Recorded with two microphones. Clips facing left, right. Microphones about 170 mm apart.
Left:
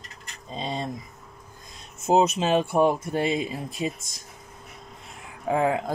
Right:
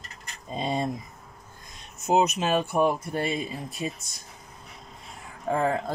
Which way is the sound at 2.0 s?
30° left (ahead or behind).